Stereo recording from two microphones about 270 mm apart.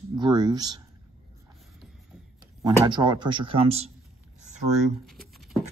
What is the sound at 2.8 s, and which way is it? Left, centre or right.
Speech, centre.